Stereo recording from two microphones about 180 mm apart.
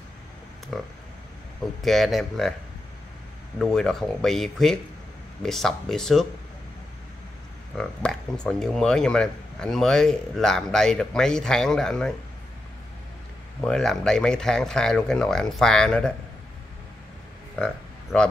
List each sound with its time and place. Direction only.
0.7 s speech: centre (ahead or behind)
3.5 s speech: centre (ahead or behind)
7.7 s speech: 5° left (ahead or behind)
13.6 s speech: 5° left (ahead or behind)
18.1 s speech: centre (ahead or behind)